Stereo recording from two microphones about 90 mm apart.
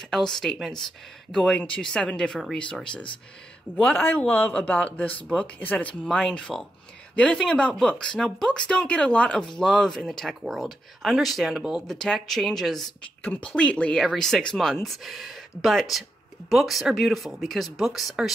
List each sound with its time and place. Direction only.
0.0 s speech: 5° left (ahead or behind)
3.7 s speech: 20° left (ahead or behind)
6.0 s speech: 5° left (ahead or behind)
13.2 s speech: 20° left (ahead or behind); by 18.3 s centre (ahead or behind)